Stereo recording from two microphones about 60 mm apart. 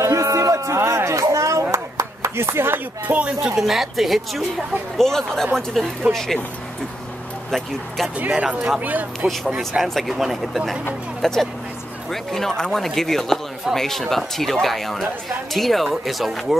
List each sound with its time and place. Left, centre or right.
0.0 s a sound: right
3.1 s speech: right
3.5 s speech: centre
8.3 s speech: centre
8.8 s speech: right
9.6 s speech: centre